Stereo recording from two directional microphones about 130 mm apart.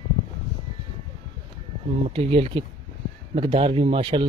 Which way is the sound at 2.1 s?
45° right (ahead or behind).